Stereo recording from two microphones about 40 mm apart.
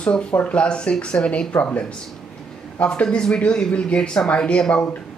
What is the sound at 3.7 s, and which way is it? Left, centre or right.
Speech, left.